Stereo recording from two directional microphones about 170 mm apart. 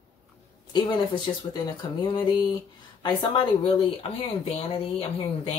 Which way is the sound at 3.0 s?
25° left (ahead or behind).